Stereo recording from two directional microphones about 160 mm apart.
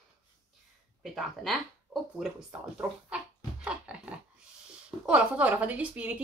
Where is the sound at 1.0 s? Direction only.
Centre (ahead or behind).